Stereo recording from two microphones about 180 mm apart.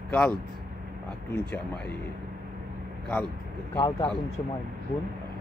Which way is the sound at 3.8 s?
25° left (ahead or behind).